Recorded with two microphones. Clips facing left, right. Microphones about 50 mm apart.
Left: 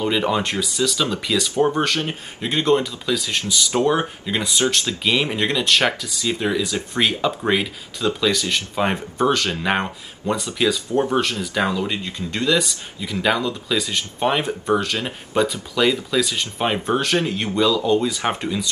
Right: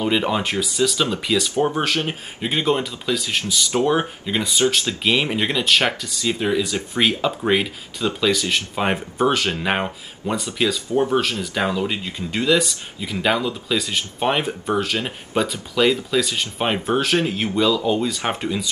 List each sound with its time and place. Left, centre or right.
0.0 s speech: centre
0.9 s speech: right
1.2 s speech: centre